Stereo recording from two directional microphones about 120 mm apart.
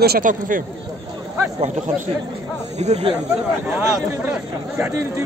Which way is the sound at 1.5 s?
75° right (ahead or behind).